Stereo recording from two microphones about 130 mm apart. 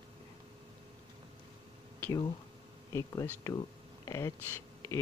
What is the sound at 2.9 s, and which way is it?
Speech, 25° left (ahead or behind).